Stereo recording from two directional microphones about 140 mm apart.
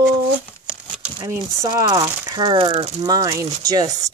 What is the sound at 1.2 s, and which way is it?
Speech, 30° right (ahead or behind).